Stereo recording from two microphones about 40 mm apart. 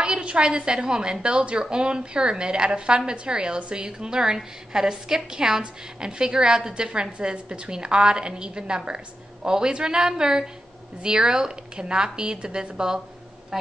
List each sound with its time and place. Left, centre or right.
0.0 s a woman's voice: right